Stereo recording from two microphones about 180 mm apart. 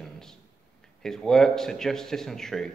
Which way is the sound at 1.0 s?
5° left (ahead or behind).